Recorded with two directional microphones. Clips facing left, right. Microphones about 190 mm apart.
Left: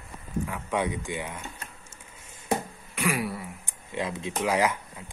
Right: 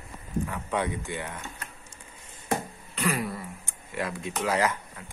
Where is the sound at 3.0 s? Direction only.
10° left (ahead or behind).